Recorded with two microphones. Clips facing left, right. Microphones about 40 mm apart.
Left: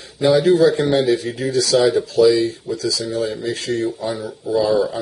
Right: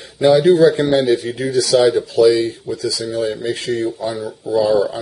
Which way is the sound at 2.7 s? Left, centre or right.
Centre.